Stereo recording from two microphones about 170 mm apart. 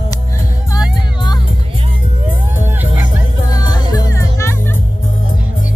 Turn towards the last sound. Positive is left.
turn(degrees=15)  # may be behind; listen again after turning